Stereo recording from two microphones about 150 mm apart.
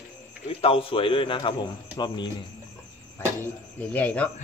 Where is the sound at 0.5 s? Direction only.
40° left (ahead or behind).